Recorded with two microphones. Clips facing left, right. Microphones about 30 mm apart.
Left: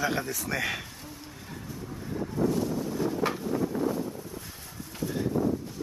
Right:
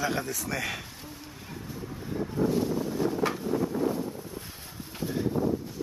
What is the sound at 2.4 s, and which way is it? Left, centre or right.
Boat, centre.